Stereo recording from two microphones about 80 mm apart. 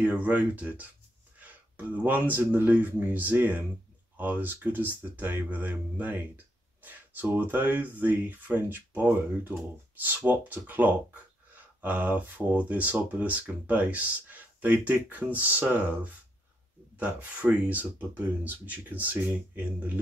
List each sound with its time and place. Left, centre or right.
0.0 s speech: centre
2.0 s speech: right